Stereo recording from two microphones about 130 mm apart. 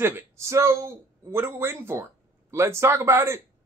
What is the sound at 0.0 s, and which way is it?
Speech, 20° right (ahead or behind).